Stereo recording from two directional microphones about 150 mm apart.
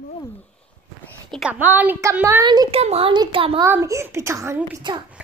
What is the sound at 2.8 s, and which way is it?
Speech, 45° right (ahead or behind).